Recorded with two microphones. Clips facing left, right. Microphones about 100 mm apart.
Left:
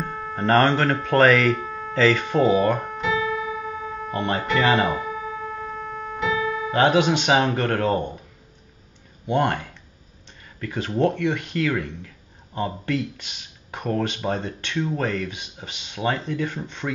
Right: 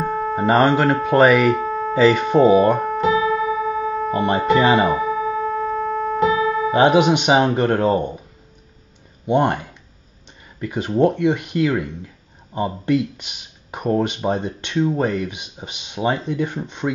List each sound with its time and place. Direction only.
0.1 s music: 30° right (ahead or behind)
0.4 s speech: 10° right (ahead or behind)
1.6 s a sound: 35° right (ahead or behind)
2.0 s speech: 15° right (ahead or behind)
2.8 s music: 40° right (ahead or behind)
4.1 s speech: 20° right (ahead or behind)
4.8 s music: 45° right (ahead or behind)
6.7 s speech: 15° right (ahead or behind)
9.2 s speech: 15° right (ahead or behind)